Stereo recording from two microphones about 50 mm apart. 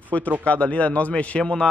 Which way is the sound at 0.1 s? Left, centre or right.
Left.